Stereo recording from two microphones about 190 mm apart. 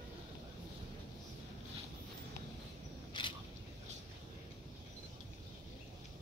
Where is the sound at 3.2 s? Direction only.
25° left (ahead or behind).